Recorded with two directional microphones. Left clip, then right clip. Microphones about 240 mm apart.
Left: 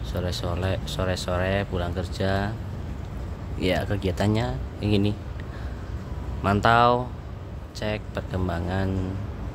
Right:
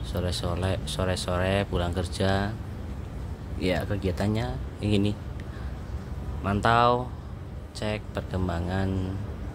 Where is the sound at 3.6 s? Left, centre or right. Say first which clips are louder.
Left 3 dB; centre.